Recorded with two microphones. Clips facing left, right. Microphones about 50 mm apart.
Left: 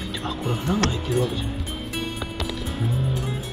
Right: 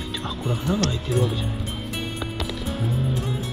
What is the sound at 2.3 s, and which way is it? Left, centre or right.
Music, centre.